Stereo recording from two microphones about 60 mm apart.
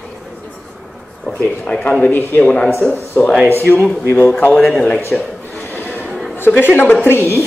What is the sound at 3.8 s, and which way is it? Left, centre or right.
Speech, centre.